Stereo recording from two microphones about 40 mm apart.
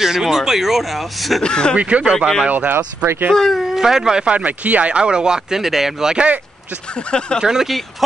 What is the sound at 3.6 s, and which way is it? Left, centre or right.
Speech, centre.